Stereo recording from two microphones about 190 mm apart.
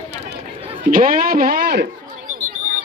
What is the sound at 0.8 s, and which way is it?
A man's voice, 50° right (ahead or behind).